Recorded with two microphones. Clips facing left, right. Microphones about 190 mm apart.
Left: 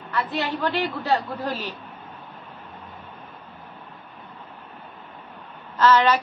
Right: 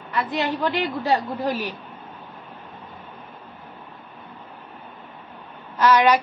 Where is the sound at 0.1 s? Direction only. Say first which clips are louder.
Right 2 dB; 15° right (ahead or behind).